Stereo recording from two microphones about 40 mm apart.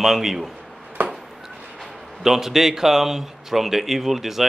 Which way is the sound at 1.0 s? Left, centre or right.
Right.